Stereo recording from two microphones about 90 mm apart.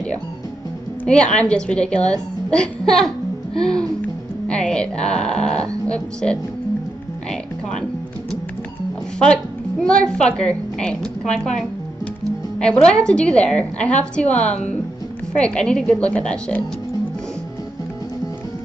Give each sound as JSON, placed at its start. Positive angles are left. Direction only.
{"t": 1.0, "sound": "a woman's voice", "side_deg": 10}
{"t": 9.2, "sound": "a woman's voice", "side_deg": 10}
{"t": 12.5, "sound": "a woman's voice", "side_deg": 10}